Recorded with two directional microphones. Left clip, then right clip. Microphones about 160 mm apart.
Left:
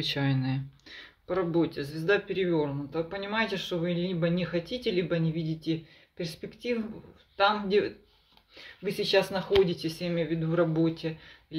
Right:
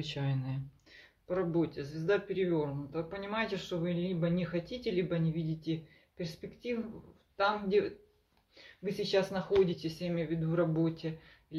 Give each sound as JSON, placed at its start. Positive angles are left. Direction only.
{"t": 0.0, "sound": "speech", "side_deg": 40}